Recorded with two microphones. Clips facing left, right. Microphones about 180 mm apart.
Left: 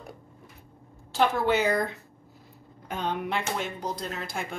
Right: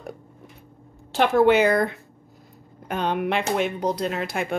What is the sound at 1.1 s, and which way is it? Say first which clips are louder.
Speech: right 7 dB; 70° right (ahead or behind).